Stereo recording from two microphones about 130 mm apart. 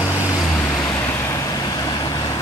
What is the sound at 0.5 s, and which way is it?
Vehicle, 20° left (ahead or behind).